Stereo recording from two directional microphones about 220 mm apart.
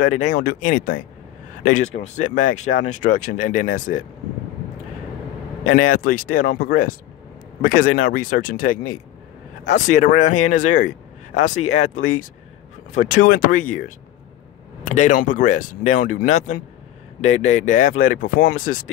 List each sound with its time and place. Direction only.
0.0 s speech: 40° left (ahead or behind)
5.7 s speech: 40° left (ahead or behind)